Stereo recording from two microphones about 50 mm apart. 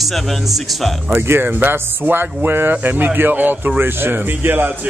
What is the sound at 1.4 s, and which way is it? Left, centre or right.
Speech, right.